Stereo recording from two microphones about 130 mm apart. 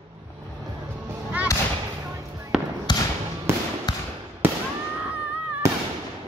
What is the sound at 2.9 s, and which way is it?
Basketball bounce, 35° left (ahead or behind).